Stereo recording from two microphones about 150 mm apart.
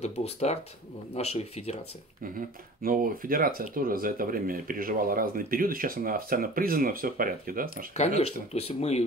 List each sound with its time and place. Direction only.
0.0 s speech: 45° left (ahead or behind)
2.3 s speech: 70° right (ahead or behind)
7.9 s speech: 45° left (ahead or behind)